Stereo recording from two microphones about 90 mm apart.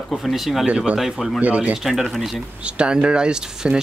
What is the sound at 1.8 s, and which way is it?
Speech, centre (ahead or behind).